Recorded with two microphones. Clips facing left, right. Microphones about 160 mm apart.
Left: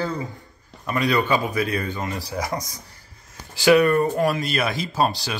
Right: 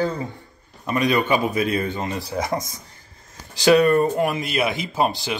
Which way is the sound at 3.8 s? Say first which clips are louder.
Right 1 dB; 20° right (ahead or behind).